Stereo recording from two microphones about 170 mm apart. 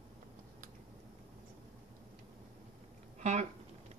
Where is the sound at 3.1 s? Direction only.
45° right (ahead or behind).